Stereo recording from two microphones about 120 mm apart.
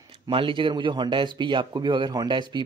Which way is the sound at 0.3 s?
45° right (ahead or behind).